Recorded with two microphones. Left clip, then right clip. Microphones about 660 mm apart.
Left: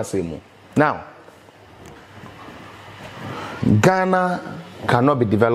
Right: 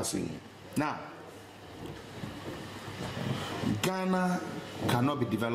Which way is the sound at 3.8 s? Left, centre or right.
Left.